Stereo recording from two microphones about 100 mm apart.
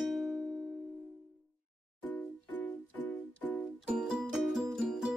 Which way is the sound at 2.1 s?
20° left (ahead or behind).